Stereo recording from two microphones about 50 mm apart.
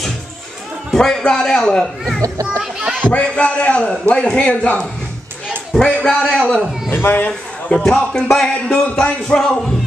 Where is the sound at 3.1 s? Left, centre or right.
Left.